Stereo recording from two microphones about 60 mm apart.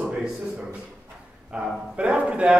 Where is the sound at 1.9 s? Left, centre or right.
Centre.